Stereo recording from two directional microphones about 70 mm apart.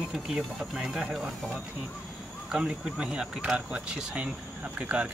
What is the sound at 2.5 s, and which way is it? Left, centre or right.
Speech, centre.